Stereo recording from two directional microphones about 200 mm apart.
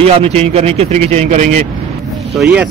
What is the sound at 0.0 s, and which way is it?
Speech, 30° right (ahead or behind).